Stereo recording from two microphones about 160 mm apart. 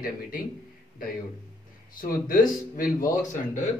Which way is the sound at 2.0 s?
60° left (ahead or behind).